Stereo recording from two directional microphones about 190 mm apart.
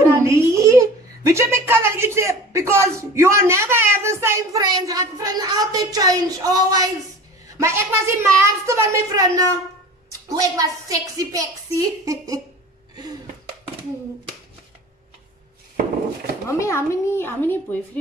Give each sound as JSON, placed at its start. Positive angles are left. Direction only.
{"t": 0.0, "sound": "a sound", "side_deg": -15}
{"t": 7.4, "sound": "a woman's voice", "side_deg": -15}
{"t": 16.4, "sound": "speech", "side_deg": 15}